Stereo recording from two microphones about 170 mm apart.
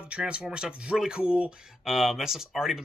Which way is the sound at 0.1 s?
5° right (ahead or behind).